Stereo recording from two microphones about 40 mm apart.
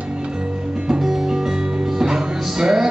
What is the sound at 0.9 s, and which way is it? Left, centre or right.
Music, centre.